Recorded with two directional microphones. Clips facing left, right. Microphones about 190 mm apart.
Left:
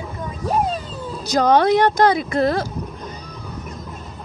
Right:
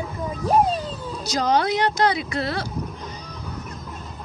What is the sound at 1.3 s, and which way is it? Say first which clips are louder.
Speech: left 6 dB; 55° left (ahead or behind).